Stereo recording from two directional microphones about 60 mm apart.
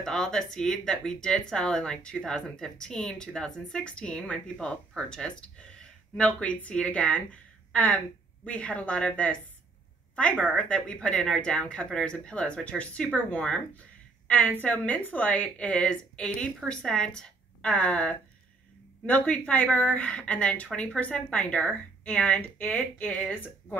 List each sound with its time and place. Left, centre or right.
0.0 s a woman's voice: centre
10.4 s a woman's voice: centre